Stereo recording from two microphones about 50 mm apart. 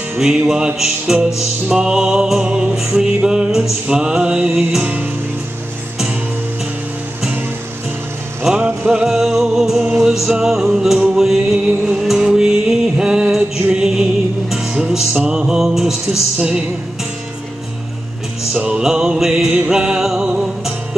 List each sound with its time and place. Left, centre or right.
0.2 s music: centre
8.5 s music: centre
11.1 s a capella: centre
11.5 s music: centre
12.0 s music: centre
16.3 s music: right
18.6 s music: centre